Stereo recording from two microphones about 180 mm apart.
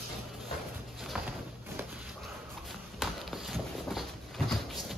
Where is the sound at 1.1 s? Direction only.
5° right (ahead or behind).